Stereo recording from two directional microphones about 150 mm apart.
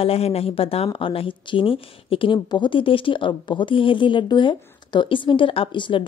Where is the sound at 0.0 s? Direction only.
40° left (ahead or behind).